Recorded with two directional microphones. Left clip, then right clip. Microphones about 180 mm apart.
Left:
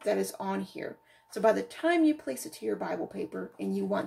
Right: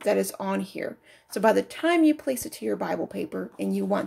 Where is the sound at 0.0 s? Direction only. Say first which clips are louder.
Right 5 dB; 40° right (ahead or behind).